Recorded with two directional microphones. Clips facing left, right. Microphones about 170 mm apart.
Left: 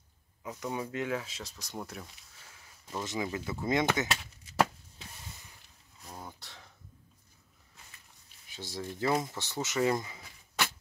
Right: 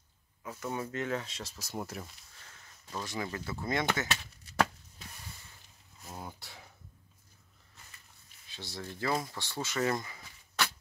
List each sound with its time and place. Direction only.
0.4 s speech: 15° left (ahead or behind); by 2.0 s 5° right (ahead or behind)
2.4 s speech: 10° left (ahead or behind)
5.9 s a sound: 5° right (ahead or behind)
8.7 s speech: 15° left (ahead or behind)